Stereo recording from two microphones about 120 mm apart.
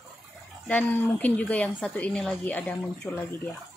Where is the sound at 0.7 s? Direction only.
15° left (ahead or behind).